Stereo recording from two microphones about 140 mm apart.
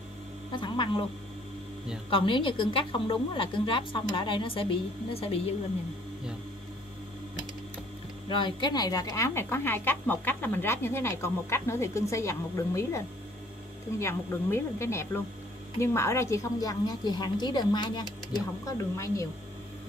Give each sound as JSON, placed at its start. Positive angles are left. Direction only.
{"t": 0.5, "sound": "speech", "side_deg": 35}
{"t": 2.0, "sound": "a woman's voice", "side_deg": 35}
{"t": 8.3, "sound": "speech", "side_deg": 35}